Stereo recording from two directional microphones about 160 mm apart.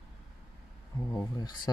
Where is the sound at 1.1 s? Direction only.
25° left (ahead or behind).